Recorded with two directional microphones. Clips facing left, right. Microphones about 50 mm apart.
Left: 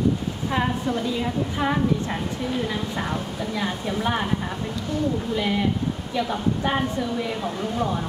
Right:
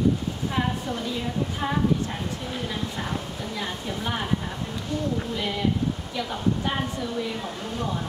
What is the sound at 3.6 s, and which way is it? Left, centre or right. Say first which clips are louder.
Speech: left 6 dB; left.